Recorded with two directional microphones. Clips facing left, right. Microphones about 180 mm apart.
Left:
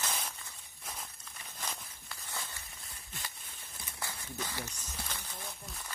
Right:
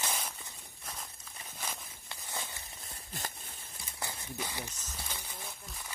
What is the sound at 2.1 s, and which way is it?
Walk, 25° right (ahead or behind).